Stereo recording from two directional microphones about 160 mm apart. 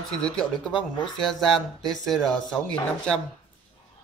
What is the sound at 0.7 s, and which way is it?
Speech, 30° left (ahead or behind).